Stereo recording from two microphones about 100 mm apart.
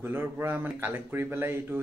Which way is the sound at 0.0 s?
25° right (ahead or behind).